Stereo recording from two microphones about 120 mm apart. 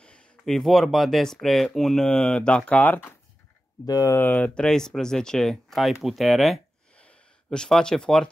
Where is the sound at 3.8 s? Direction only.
30° left (ahead or behind).